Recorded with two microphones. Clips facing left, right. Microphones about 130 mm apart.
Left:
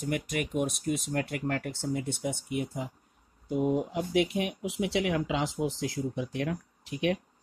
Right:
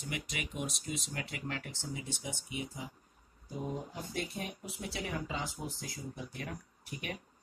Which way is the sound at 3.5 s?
85° left.